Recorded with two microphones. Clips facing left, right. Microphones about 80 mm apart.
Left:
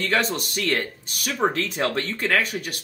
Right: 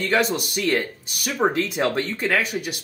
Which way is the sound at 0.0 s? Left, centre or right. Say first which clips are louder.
Right 2 dB; centre.